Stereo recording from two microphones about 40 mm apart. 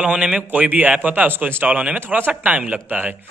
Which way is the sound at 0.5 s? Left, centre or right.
Right.